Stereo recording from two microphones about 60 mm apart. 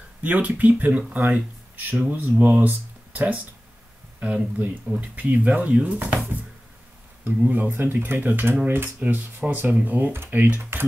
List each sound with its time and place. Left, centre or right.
0.2 s speech: right
7.2 s speech: right
7.7 s speech: right
9.0 s speech: right